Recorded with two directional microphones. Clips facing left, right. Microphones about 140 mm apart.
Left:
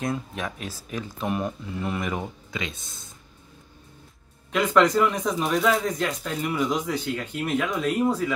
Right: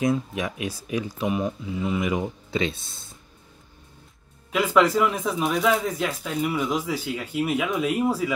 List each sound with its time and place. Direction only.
0.1 s speech: 10° right (ahead or behind)
2.5 s speech: 30° right (ahead or behind)
4.5 s speech: 5° right (ahead or behind)